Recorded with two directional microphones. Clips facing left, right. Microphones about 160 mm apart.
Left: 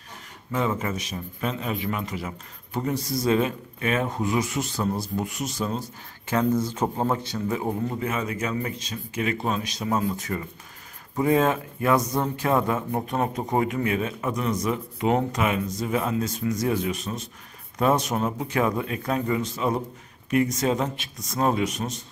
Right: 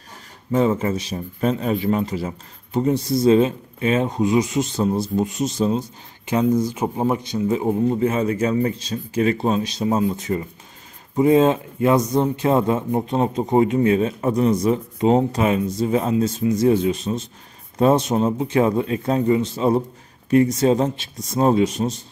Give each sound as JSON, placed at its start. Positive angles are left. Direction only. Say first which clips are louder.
{"t": 0.5, "sound": "a man's voice", "louder": "right 7 dB", "side_deg": -30}